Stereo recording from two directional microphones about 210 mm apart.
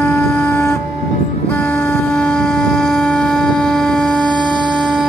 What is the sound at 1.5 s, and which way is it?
Vehicle, 5° left (ahead or behind).